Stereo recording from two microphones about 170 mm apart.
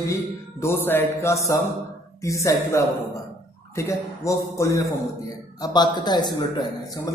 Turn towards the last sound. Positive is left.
turn(degrees=20)  # may be behind; listen again after turning